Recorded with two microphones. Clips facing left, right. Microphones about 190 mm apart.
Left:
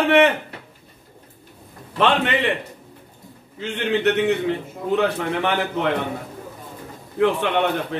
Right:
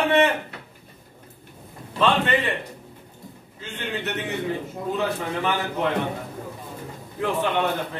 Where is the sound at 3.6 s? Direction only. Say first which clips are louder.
Left 10 dB; 70° left (ahead or behind).